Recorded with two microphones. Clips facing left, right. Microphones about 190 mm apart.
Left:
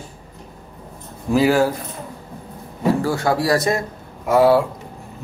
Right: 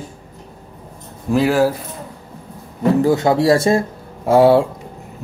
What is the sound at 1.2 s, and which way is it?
Speech, centre (ahead or behind).